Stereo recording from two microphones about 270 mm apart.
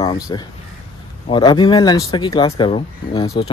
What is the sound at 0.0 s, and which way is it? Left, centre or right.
Speech, centre.